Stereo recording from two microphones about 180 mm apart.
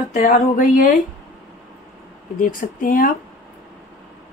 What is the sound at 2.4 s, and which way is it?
Speech, 50° left (ahead or behind).